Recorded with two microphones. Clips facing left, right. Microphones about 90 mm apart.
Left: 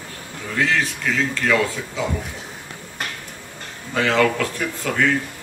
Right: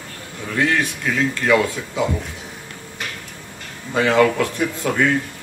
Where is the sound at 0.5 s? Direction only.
15° right (ahead or behind).